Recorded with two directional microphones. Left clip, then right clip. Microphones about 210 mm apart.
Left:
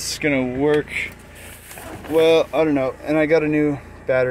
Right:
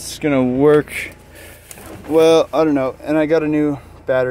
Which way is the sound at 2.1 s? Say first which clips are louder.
Right 3 dB; 25° right (ahead or behind).